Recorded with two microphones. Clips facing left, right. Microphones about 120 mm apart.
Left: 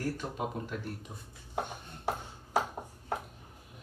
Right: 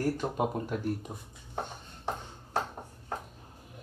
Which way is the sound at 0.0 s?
45° right (ahead or behind).